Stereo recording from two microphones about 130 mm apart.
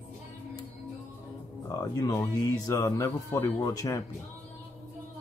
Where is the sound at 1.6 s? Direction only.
25° left (ahead or behind).